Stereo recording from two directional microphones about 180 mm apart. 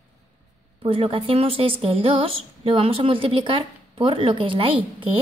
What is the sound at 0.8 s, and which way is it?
A woman's voice, 30° right (ahead or behind).